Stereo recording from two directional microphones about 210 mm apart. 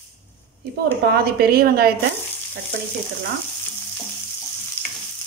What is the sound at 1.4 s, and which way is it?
Speech, 45° right (ahead or behind).